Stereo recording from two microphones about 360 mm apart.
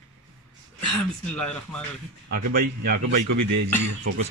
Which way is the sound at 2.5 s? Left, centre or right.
Right.